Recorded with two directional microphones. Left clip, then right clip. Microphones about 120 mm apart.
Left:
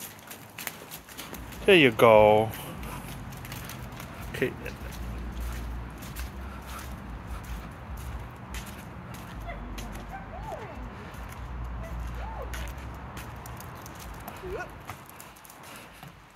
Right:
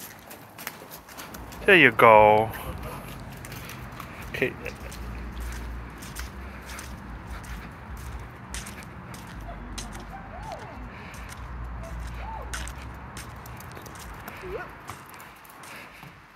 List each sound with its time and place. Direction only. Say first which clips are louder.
1.7 s speech: right 3 dB; 40° left (ahead or behind)
4.3 s speech: right 3 dB; 20° left (ahead or behind)